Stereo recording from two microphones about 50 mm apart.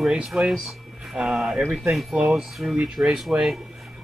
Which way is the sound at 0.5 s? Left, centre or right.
Centre.